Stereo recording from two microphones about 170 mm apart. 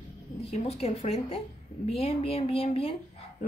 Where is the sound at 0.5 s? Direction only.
40° left (ahead or behind).